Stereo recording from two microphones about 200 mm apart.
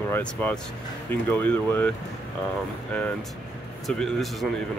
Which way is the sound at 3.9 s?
Centre (ahead or behind).